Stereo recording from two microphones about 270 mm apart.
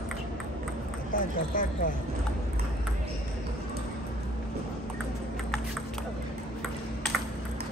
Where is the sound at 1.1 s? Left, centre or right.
Left.